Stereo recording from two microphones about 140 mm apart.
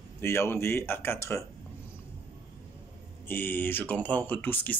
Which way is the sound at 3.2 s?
15° left (ahead or behind).